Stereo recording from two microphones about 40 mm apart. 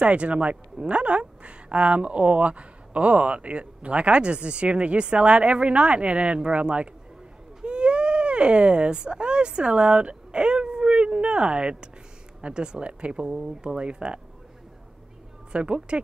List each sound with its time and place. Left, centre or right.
0.0 s speech: right
15.5 s speech: right